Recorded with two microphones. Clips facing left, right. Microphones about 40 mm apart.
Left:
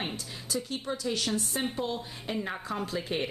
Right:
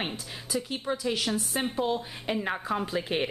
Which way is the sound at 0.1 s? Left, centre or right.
Centre.